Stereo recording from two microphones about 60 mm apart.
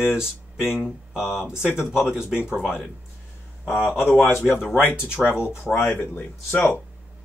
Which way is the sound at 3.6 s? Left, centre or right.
Left.